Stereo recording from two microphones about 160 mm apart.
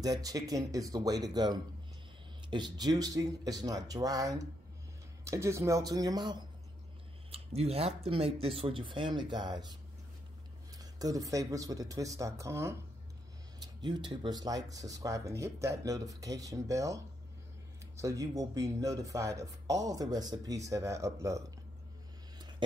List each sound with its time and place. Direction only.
0.0 s speech: 20° right (ahead or behind)
7.2 s speech: 40° right (ahead or behind)
10.8 s speech: 25° right (ahead or behind)